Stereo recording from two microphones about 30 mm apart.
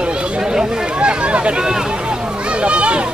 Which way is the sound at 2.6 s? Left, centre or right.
Right.